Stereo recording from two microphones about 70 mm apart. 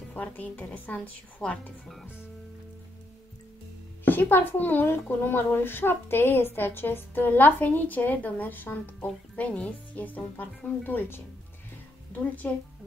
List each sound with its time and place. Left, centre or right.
0.1 s speech: left
4.0 s speech: left